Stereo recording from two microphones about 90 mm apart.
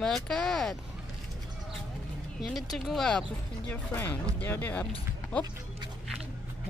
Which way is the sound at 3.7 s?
20° left (ahead or behind).